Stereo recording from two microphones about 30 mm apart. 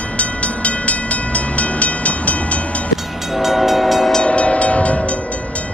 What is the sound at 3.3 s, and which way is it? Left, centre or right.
Train, centre.